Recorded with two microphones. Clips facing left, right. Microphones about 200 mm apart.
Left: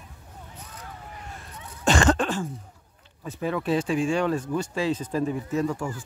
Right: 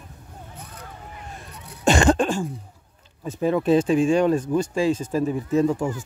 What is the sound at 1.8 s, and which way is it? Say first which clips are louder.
Cough: right 3 dB; 15° right (ahead or behind).